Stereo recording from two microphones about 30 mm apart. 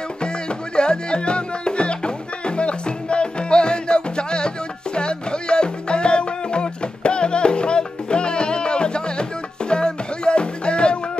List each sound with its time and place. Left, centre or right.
0.2 s music: left